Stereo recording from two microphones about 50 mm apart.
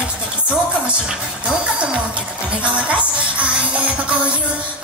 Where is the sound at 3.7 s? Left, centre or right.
Right.